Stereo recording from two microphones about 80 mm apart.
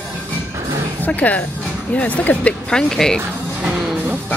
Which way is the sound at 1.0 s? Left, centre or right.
Centre.